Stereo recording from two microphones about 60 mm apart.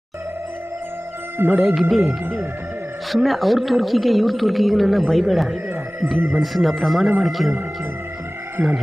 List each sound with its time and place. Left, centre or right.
1.4 s speech: right
1.8 s speech: centre
6.1 s speech: right
6.4 s speech: centre
8.6 s speech: centre